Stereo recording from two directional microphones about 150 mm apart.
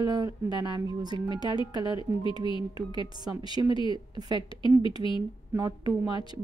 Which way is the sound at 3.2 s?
30° right (ahead or behind).